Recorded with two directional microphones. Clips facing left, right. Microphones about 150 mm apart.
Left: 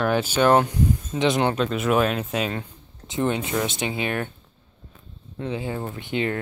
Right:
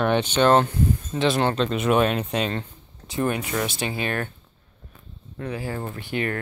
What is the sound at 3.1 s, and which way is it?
Speech, 20° left (ahead or behind).